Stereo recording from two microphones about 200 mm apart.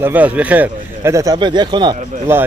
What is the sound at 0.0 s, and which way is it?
Speech, 10° right (ahead or behind).